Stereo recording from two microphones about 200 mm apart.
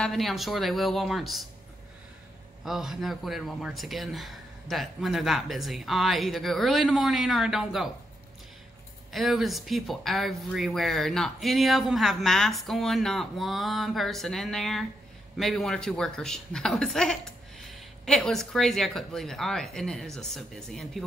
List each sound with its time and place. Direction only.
0.0 s speech: centre (ahead or behind)
2.6 s speech: centre (ahead or behind)
9.1 s speech: centre (ahead or behind)